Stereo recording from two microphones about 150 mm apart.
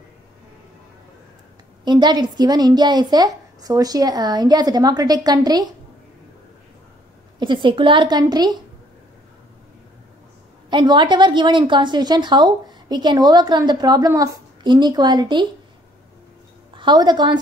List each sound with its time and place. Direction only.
1.9 s a woman's voice: 30° right (ahead or behind)
7.3 s a woman's voice: 35° right (ahead or behind)
10.7 s a woman's voice: 30° right (ahead or behind)
16.7 s a woman's voice: 30° right (ahead or behind)